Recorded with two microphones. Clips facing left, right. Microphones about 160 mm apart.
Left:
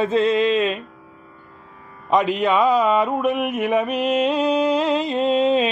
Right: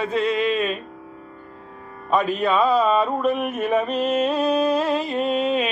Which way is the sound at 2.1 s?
15° left (ahead or behind).